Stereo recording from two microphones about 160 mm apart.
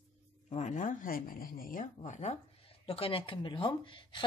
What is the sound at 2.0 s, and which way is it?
Speech, 45° left (ahead or behind).